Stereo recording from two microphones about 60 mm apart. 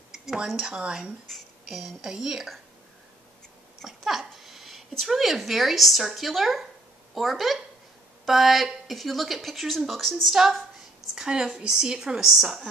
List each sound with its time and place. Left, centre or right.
0.1 s speech: centre
1.2 s speech: centre
3.8 s a child's voice: centre